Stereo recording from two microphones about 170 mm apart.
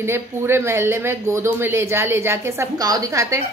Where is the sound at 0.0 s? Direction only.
15° right (ahead or behind).